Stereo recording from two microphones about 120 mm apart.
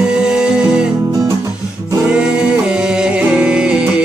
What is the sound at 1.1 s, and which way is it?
Music, 30° right (ahead or behind).